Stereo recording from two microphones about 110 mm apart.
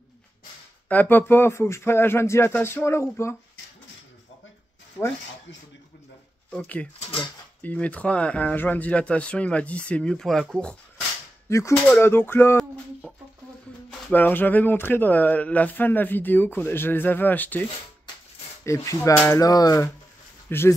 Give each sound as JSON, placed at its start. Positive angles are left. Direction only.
{"t": 0.8, "sound": "speech", "side_deg": 15}
{"t": 6.6, "sound": "speech", "side_deg": 15}
{"t": 11.4, "sound": "speech", "side_deg": 25}
{"t": 13.0, "sound": "a sound", "side_deg": 15}
{"t": 13.8, "sound": "speech", "side_deg": 15}
{"t": 18.6, "sound": "speech", "side_deg": 25}
{"t": 19.4, "sound": "speech", "side_deg": 35}
{"t": 20.4, "sound": "speech", "side_deg": 20}